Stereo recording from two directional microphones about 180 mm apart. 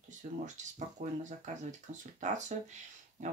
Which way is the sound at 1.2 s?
40° right (ahead or behind).